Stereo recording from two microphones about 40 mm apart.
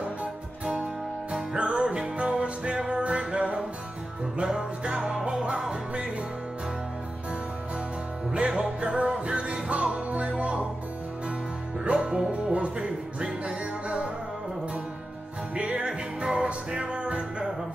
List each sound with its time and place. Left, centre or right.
0.2 s music: right
8.3 s music: right
11.8 s music: right
15.5 s music: right